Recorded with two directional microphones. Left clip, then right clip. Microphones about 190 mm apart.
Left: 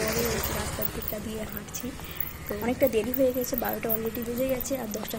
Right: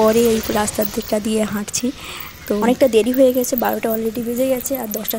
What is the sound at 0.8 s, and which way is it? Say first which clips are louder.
Speech: right 14 dB; 50° right (ahead or behind).